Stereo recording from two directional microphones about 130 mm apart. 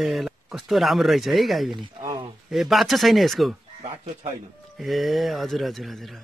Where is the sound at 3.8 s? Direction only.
55° right (ahead or behind).